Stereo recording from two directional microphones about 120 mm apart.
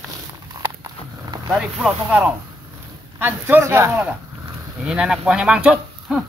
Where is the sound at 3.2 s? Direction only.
15° right (ahead or behind).